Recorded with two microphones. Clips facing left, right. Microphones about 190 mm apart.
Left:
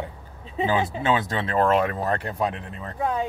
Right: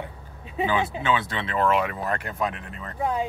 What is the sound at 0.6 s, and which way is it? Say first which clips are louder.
Speech: left 1 dB; 40° left (ahead or behind).